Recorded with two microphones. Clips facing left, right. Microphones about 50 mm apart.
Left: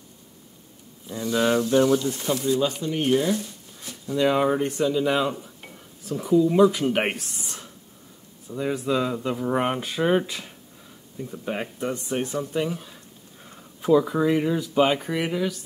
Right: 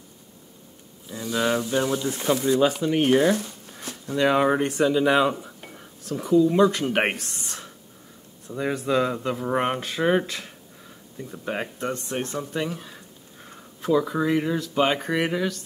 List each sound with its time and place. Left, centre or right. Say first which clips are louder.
1.0 s speech: left 2 dB; centre
2.1 s speech: right 2 dB; right
3.0 s a sound: right 2 dB; right
4.2 s speech: right 1 dB; centre
4.8 s speech: right 3 dB; right
5.1 s dishes: right 3 dB; centre
6.2 s speech: even; centre
7.2 s speech: right 1 dB; centre
8.5 s speech: right 1 dB; centre
11.2 s speech: even; centre
11.8 s speech: left 1 dB; centre
13.7 s speech: left 3 dB; centre